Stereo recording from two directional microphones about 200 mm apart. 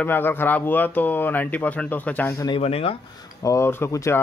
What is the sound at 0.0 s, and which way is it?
Speech, 10° left (ahead or behind).